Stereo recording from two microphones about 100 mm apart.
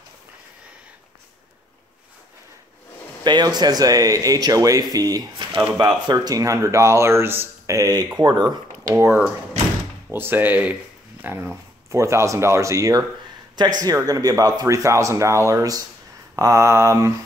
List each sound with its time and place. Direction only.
3.3 s speech: 45° right (ahead or behind)
6.1 s speech: 35° right (ahead or behind)
8.9 s speech: 20° right (ahead or behind)